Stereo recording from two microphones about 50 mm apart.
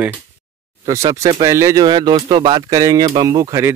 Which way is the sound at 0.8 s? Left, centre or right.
Right.